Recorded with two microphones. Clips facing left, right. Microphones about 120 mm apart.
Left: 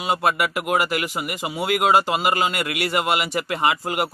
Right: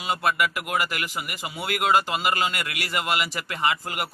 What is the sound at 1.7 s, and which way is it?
A man's voice, 15° left (ahead or behind).